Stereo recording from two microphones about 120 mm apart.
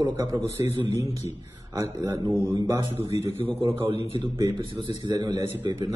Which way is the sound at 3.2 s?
65° left (ahead or behind).